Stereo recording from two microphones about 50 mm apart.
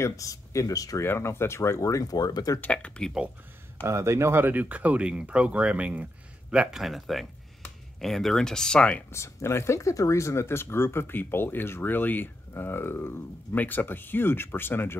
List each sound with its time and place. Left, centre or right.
0.0 s speech: left
1.0 s speech: left
3.0 s speech: centre
3.8 s speech: right
4.4 s speech: right; by 6.8 s centre
6.8 s speech: centre; by 9.0 s left
9.1 s speech: left
13.6 s speech: left